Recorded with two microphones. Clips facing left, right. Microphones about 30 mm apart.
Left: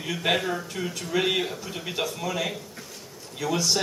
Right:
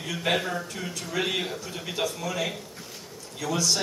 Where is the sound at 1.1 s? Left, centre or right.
Centre.